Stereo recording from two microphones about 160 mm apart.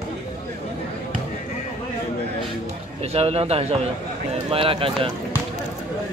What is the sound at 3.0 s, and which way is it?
A man's voice, 40° right (ahead or behind).